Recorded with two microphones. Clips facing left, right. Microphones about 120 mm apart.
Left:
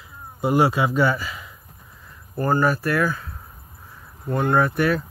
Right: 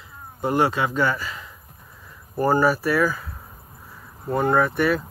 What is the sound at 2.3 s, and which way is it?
Speech, 10° right (ahead or behind).